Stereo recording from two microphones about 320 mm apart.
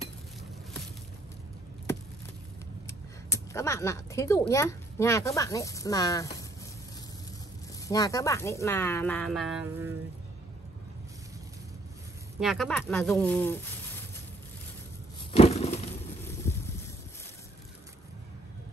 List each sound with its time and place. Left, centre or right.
2.9 s speech: centre
7.9 s speech: centre
12.4 s speech: centre
15.3 s a sound: centre